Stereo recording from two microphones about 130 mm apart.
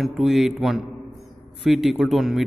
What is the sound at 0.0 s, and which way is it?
A man's voice, centre (ahead or behind).